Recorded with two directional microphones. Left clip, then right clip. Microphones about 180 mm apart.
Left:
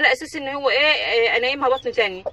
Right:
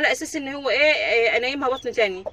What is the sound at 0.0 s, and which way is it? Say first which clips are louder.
A woman's voice: left 3 dB; 20° right (ahead or behind).